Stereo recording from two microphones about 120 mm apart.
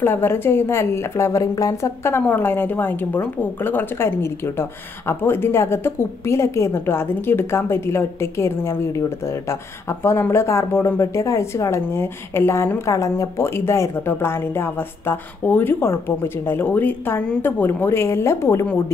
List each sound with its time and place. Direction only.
0.0 s a woman's voice: 20° left (ahead or behind)